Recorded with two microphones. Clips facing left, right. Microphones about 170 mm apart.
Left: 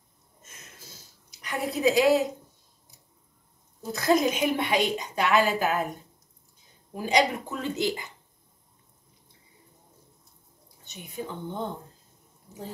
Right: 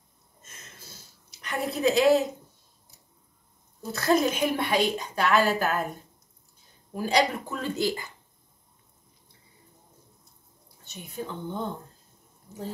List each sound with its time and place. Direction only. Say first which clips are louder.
0.4 s a sound: even; 15° left (ahead or behind)
1.4 s a woman's voice: left 1 dB; 15° left (ahead or behind)
3.9 s a woman's voice: even; 15° left (ahead or behind)
7.0 s speech: even; 15° left (ahead or behind)
10.9 s a woman's voice: even; 15° left (ahead or behind)